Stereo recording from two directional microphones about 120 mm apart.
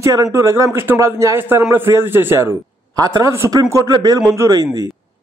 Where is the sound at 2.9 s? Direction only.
30° right (ahead or behind).